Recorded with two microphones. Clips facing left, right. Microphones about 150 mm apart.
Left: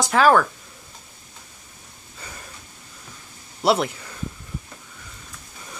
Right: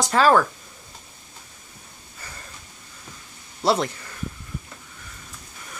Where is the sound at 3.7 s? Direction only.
10° left (ahead or behind).